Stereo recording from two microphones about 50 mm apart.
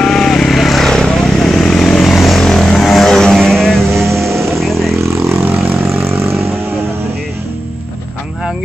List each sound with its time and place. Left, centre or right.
0.0 s vehicle: centre
3.9 s vehicle: right
4.6 s vehicle: centre
5.3 s vehicle: right
5.9 s vehicle: right